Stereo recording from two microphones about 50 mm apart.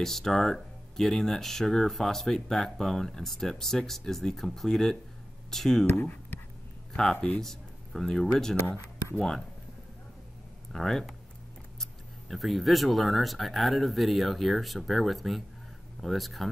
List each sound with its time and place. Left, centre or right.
0.0 s speech: centre
6.9 s speech: centre
10.7 s speech: centre